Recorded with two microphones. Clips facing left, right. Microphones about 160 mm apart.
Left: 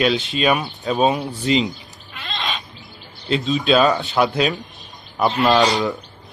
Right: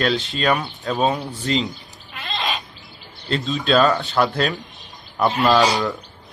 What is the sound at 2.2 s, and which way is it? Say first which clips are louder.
Bird: right 2 dB; 5° right (ahead or behind).